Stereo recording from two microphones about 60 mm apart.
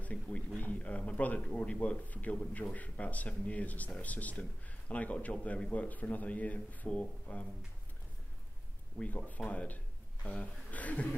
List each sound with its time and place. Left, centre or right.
0.0 s speech: left
8.9 s speech: left